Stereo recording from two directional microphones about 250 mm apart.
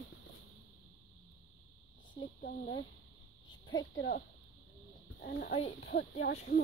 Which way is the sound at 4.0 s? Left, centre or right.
Left.